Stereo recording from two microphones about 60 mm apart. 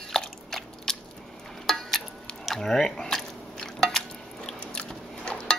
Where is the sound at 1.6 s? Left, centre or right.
Centre.